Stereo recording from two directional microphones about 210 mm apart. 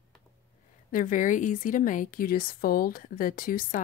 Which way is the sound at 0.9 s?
40° left (ahead or behind).